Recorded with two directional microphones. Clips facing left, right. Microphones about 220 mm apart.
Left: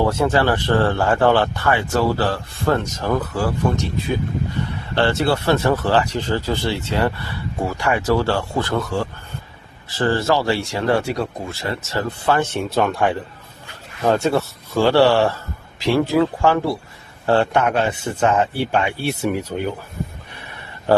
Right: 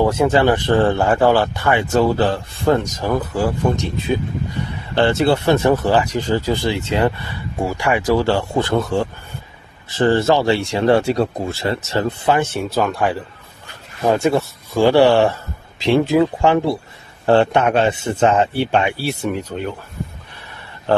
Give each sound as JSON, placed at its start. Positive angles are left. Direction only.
{"t": 0.0, "sound": "speech", "side_deg": -15}
{"t": 12.5, "sound": "speech", "side_deg": 0}
{"t": 14.0, "sound": "speech", "side_deg": -10}
{"t": 18.9, "sound": "speech", "side_deg": 0}